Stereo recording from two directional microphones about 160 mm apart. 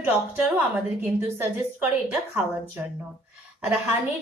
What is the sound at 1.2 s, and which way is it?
Speech, 15° right (ahead or behind).